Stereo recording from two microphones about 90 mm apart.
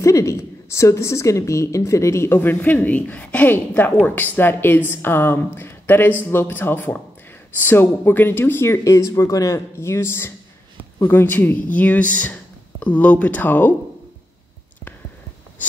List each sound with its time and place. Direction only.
0.0 s a woman's voice: 35° left (ahead or behind); by 13.7 s 20° left (ahead or behind)